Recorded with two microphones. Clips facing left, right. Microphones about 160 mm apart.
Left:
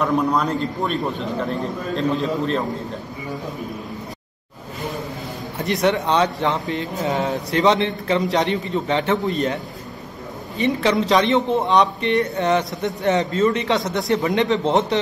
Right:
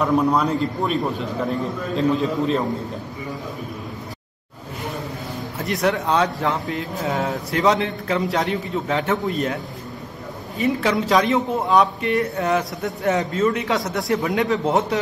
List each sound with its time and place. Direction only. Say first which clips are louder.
0.0 s a man's voice: right 1 dB; 10° right (ahead or behind)
2.0 s a man's voice: right 2 dB; 5° right (ahead or behind)
5.6 s a man's voice: left 2 dB; centre (ahead or behind)
10.6 s a man's voice: left 1 dB; 5° right (ahead or behind)